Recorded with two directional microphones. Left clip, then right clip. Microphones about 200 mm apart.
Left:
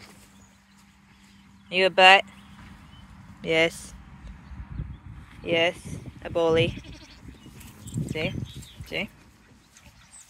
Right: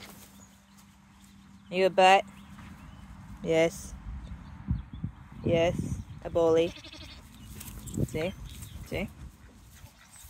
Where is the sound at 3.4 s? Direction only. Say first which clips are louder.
Left 3 dB; 5° right (ahead or behind).